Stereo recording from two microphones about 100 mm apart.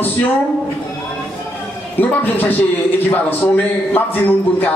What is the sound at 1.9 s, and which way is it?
A man's voice, 20° left (ahead or behind).